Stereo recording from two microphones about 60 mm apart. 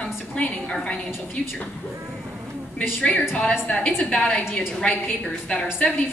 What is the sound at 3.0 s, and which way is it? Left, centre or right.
A woman's voice, left.